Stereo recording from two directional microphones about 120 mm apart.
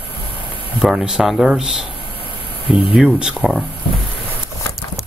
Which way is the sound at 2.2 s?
50° left (ahead or behind).